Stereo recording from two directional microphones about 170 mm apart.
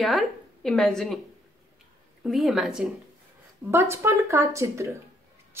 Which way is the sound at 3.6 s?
15° right (ahead or behind).